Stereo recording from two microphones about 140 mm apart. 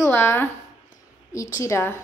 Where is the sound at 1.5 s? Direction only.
20° left (ahead or behind).